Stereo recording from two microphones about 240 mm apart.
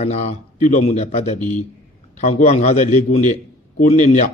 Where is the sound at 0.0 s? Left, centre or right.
Left.